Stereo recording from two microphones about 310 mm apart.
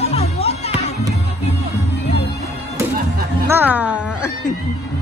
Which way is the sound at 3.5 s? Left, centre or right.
Centre.